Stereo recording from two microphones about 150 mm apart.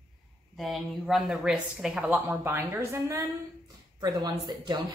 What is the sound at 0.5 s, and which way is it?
A woman's voice, centre (ahead or behind).